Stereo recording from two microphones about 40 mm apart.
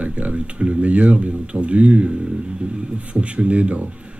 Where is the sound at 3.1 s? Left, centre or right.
Right.